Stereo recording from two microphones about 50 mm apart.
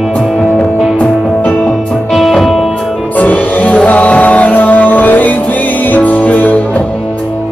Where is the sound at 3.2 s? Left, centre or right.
Left.